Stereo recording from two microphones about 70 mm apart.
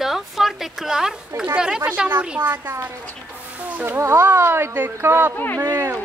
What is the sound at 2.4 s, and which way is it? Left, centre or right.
Speech, right.